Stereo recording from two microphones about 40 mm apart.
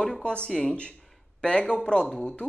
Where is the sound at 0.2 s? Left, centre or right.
Left.